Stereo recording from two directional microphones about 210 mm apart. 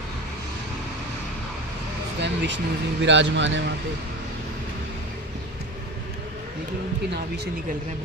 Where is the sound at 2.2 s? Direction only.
55° right (ahead or behind).